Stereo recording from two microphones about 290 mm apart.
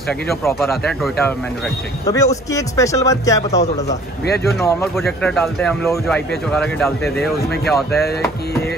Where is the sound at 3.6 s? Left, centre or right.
Left.